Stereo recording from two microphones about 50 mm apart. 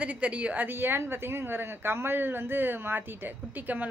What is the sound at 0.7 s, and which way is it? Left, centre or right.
A woman's voice, right.